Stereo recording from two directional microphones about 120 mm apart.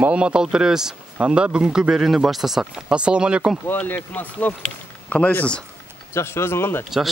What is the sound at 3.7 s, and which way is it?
Speech, 15° left (ahead or behind).